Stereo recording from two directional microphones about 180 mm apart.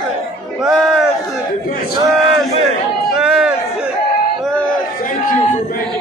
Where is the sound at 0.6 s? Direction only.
Centre (ahead or behind).